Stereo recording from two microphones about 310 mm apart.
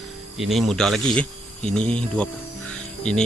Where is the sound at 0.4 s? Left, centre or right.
Centre.